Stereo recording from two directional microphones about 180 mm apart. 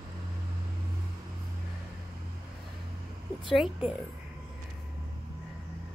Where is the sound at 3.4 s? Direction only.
Centre (ahead or behind).